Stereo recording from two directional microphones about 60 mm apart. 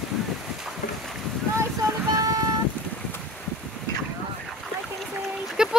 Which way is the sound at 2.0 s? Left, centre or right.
Right.